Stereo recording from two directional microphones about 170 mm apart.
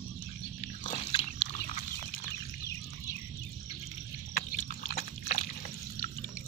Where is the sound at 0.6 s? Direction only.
40° left (ahead or behind).